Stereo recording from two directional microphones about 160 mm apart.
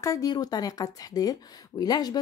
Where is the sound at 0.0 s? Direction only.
20° left (ahead or behind).